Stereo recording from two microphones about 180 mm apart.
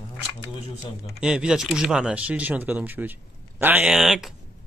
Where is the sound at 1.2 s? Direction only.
5° right (ahead or behind).